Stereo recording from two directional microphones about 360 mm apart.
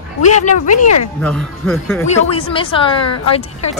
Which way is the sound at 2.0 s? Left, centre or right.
Centre.